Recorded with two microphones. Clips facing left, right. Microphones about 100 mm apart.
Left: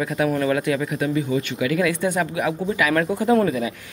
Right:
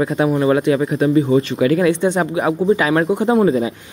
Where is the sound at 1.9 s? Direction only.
25° right (ahead or behind).